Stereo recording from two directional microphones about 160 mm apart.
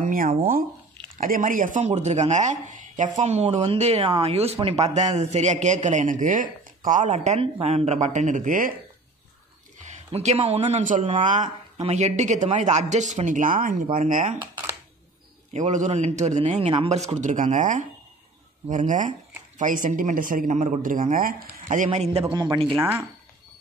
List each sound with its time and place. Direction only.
0.0 s a sound: 60° right (ahead or behind)
1.1 s speech: 60° right (ahead or behind)
9.8 s speech: 45° right (ahead or behind)
15.5 s speech: 50° right (ahead or behind)
22.3 s speech: 30° right (ahead or behind)
22.8 s speech: 15° right (ahead or behind)